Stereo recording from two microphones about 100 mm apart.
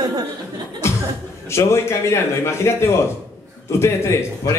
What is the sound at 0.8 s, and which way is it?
Chuckle, 25° left (ahead or behind).